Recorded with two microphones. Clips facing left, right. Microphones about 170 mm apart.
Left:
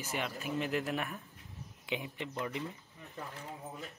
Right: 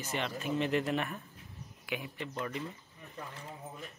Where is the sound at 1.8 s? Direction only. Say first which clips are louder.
Even; 20° left (ahead or behind).